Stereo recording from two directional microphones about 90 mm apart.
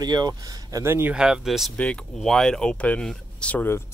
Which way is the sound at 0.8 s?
25° right (ahead or behind).